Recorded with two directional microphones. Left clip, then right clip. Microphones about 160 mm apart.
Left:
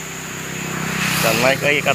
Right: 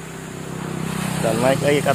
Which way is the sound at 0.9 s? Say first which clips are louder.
Left 5 dB; 15° right (ahead or behind).